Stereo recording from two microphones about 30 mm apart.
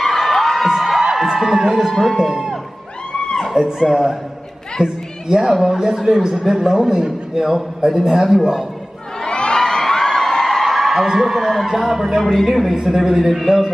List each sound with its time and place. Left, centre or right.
0.0 s crowd: centre
0.7 s music: centre
2.1 s speech: right
3.6 s speech: right
3.9 s a man's voice: centre
4.8 s a man's voice: right
9.2 s crowd: left
9.5 s whoop: centre
10.9 s a man's voice: centre
12.2 s a man's voice: centre
12.4 s a man's voice: centre